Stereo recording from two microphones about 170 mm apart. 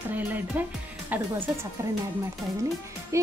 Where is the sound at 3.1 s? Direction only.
20° right (ahead or behind).